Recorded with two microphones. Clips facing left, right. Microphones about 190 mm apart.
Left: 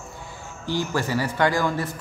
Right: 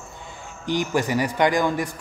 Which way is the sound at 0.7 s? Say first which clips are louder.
Right 2 dB; 15° right (ahead or behind).